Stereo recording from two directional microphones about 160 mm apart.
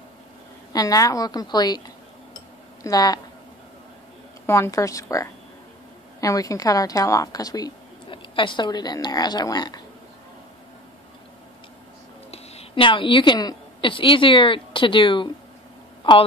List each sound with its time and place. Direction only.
0.7 s a woman's voice: 20° left (ahead or behind)
2.8 s a woman's voice: 25° left (ahead or behind)
4.5 s a woman's voice: 20° left (ahead or behind)
12.3 s a woman's voice: 35° left (ahead or behind)